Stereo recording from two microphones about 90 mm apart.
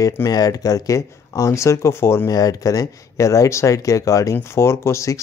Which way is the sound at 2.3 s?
45° left (ahead or behind).